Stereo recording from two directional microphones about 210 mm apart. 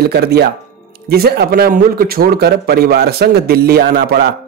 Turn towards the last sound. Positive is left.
turn(degrees=-50)  # may be behind; listen again after turning